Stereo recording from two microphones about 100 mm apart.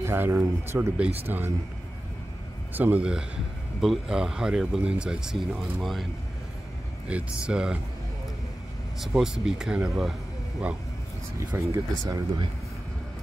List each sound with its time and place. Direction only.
0.0 s speech: 25° right (ahead or behind)
2.7 s speech: 15° right (ahead or behind); by 6.0 s centre (ahead or behind)
7.1 s speech: 10° right (ahead or behind)
9.0 s speech: 5° right (ahead or behind)
11.3 s speech: 30° right (ahead or behind)
11.9 s speech: 45° right (ahead or behind)